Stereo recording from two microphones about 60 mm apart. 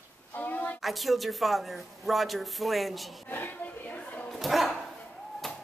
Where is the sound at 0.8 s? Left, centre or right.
Centre.